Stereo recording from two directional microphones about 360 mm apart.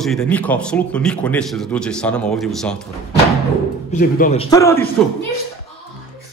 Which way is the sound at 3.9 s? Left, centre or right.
Left.